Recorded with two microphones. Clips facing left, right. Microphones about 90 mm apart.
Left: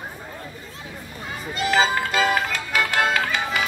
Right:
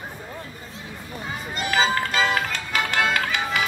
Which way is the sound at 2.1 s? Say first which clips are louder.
Left 2 dB; centre (ahead or behind).